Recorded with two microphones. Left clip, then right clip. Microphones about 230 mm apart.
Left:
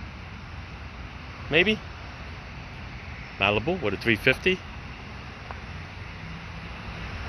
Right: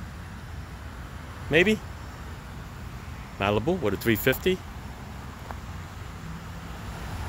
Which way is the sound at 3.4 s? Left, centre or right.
Centre.